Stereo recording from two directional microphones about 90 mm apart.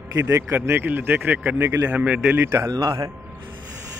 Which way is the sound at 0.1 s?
30° right (ahead or behind).